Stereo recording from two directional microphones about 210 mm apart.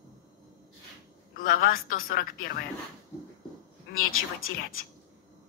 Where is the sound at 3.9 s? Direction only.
40° left (ahead or behind).